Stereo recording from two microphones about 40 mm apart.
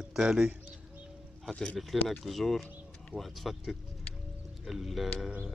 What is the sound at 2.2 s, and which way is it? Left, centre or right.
Speech, centre.